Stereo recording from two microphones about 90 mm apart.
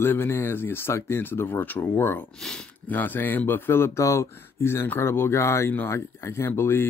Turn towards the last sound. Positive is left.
turn(degrees=25)  # may be behind; listen again after turning